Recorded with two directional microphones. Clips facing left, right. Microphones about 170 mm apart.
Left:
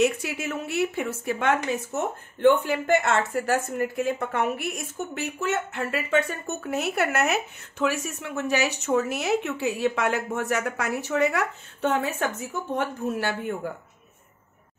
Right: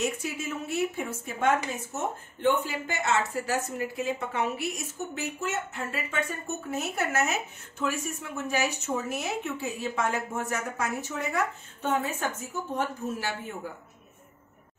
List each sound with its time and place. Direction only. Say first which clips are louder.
0.0 s speech: left 7 dB; 70° left (ahead or behind)
2.6 s a woman's voice: left 9 dB; 55° left (ahead or behind)
7.8 s speech: left 4 dB; 80° left